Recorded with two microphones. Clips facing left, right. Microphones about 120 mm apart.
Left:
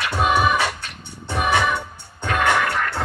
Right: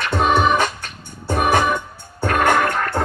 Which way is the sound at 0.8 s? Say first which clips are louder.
Right 1 dB; 45° right (ahead or behind).